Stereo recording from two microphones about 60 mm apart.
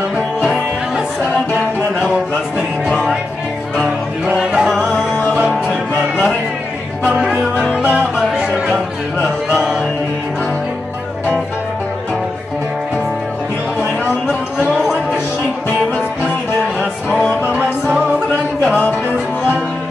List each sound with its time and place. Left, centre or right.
0.5 s music: centre
4.4 s music: centre
4.6 s music: centre
7.0 s music: centre
17.4 s music: right